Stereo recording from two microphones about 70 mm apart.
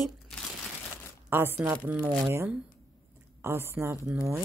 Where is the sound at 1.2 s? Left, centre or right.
Right.